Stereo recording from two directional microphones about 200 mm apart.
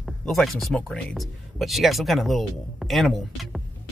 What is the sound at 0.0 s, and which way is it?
Speech, centre (ahead or behind).